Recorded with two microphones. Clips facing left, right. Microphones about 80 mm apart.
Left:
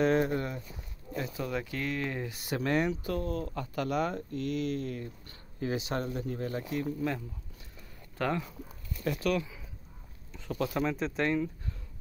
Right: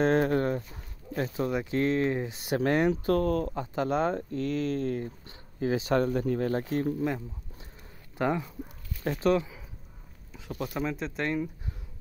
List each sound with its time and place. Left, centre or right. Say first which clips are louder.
0.4 s a sound: right 8 dB; right
1.1 s speech: right 5 dB; right
1.5 s speech: right 9 dB; centre
2.6 s speech: right 4 dB; right
3.1 s speech: right 8 dB; right
3.5 s speech: right 3 dB; right
4.4 s speech: right 1 dB; right
5.9 s speech: right 8 dB; right
7.0 s speech: right 3 dB; right
10.3 s speech: left 2 dB; centre